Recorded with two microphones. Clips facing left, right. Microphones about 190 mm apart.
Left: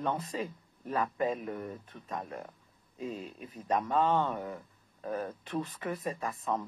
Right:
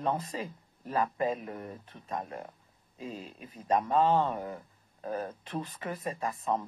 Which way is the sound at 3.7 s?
30° right (ahead or behind).